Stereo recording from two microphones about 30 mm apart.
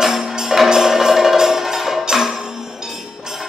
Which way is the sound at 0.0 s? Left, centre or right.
Centre.